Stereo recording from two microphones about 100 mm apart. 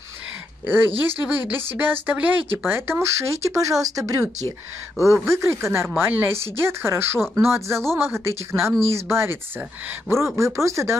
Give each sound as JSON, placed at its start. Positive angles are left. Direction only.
{"t": 0.7, "sound": "speech", "side_deg": -20}